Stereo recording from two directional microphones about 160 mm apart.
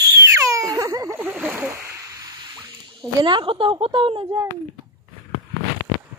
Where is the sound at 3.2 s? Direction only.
30° right (ahead or behind).